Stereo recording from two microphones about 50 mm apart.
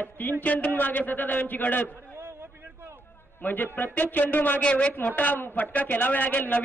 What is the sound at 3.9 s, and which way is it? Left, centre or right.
A man's voice, left.